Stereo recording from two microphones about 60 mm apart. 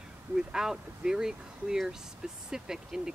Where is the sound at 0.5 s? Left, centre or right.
Centre.